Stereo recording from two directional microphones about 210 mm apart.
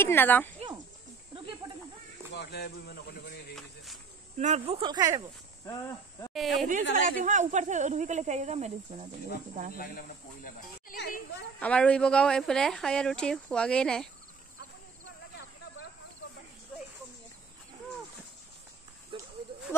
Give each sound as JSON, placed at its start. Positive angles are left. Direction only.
{"t": 0.0, "sound": "speech", "side_deg": 10}
{"t": 2.3, "sound": "speech", "side_deg": 50}
{"t": 3.5, "sound": "speech", "side_deg": 0}
{"t": 4.4, "sound": "speech", "side_deg": -30}
{"t": 5.7, "sound": "speech", "side_deg": 15}
{"t": 6.3, "sound": "speech", "side_deg": 0}
{"t": 7.2, "sound": "speech", "side_deg": -35}
{"t": 9.8, "sound": "speech", "side_deg": 40}
{"t": 11.6, "sound": "speech", "side_deg": 5}
{"t": 19.1, "sound": "sheep", "side_deg": -25}